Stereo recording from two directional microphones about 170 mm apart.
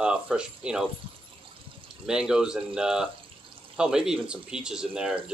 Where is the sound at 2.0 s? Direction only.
5° right (ahead or behind).